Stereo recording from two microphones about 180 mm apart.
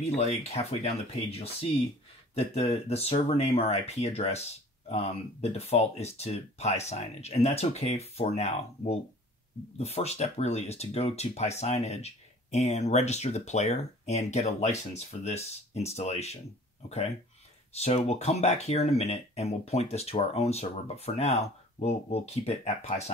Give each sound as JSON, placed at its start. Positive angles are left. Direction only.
{"t": 0.0, "sound": "speech", "side_deg": 35}
{"t": 17.7, "sound": "speech", "side_deg": 35}